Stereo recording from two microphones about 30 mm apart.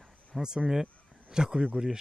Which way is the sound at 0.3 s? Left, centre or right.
Centre.